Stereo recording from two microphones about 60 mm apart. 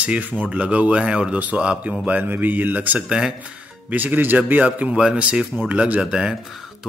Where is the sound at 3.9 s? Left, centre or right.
Right.